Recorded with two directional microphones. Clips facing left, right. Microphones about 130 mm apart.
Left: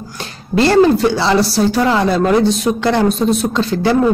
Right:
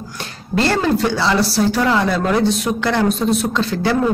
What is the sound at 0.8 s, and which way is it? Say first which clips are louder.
Speech: left 4 dB; 20° left (ahead or behind).